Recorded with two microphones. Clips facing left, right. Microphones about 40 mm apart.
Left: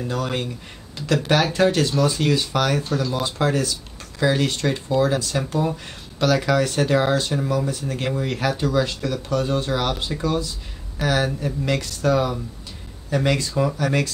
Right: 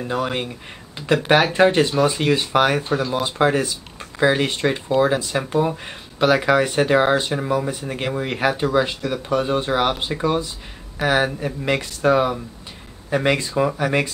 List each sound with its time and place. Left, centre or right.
0.0 s speech: centre